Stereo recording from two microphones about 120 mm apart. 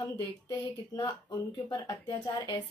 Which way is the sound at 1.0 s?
35° left (ahead or behind).